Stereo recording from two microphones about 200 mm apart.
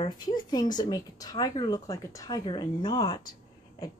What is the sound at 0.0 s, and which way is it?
Speech, 20° left (ahead or behind).